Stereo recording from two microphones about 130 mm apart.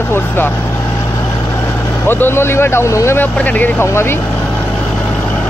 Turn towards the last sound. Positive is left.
turn(degrees=20)  # may be behind; listen again after turning